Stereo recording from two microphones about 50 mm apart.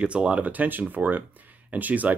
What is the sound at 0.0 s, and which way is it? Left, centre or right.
Speech, right.